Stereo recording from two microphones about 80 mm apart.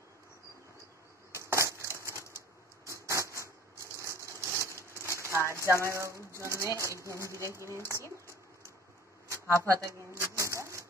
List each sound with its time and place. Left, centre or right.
1.3 s a sound: right
4.0 s wood: right
5.0 s a sound: right
5.9 s speech: right
7.4 s speech: left
9.3 s shuffling cards: right